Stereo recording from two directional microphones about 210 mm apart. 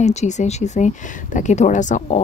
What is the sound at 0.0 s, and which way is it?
Speech, 35° left (ahead or behind).